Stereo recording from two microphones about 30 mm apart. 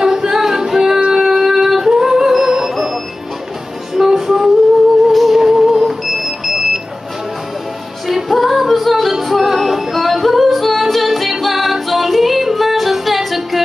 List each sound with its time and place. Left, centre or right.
0.0 s singing: right
1.1 s music: centre
5.1 s music: centre
5.4 s music: centre
8.1 s music: centre
9.2 s yodeling: centre